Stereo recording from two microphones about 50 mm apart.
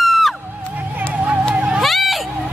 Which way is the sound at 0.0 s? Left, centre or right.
Centre.